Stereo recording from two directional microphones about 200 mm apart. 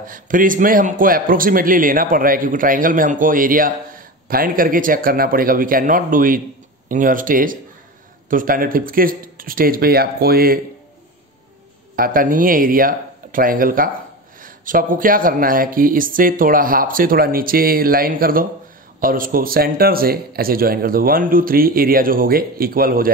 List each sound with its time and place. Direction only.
0.0 s a man's voice: 45° right (ahead or behind)
11.9 s a man's voice: 45° right (ahead or behind)